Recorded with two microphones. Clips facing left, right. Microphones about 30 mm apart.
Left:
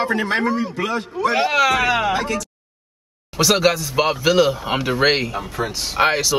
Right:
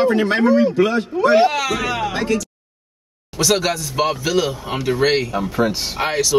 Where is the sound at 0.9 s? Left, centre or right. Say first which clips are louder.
Right 4 dB; centre.